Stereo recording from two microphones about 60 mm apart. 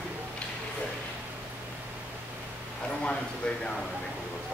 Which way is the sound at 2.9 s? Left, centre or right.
Centre.